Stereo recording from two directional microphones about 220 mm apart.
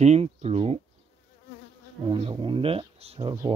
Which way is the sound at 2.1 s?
25° right (ahead or behind).